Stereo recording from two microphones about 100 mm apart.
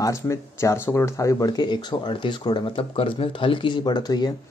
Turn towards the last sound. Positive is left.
turn(degrees=45)  # may be behind; listen again after turning